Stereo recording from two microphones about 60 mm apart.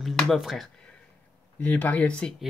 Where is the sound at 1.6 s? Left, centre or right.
Left.